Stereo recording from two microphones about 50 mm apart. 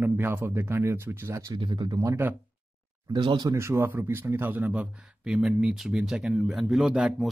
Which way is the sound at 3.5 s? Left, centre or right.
Right.